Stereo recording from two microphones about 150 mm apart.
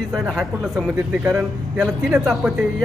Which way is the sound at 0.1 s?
Centre (ahead or behind).